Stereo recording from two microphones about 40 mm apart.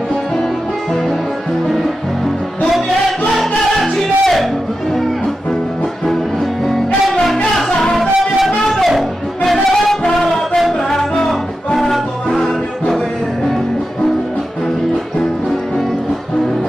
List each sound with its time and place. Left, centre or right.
3.3 s music: centre
6.6 s music: centre